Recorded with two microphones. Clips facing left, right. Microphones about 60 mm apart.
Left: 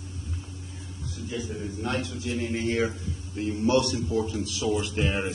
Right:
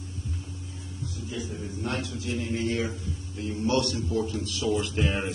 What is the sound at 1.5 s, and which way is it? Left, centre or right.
Speech, centre.